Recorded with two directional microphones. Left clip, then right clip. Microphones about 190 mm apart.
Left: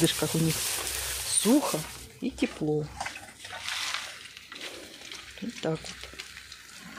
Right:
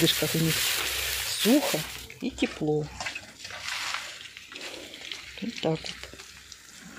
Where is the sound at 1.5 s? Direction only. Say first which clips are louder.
Right 1 dB; 10° left (ahead or behind).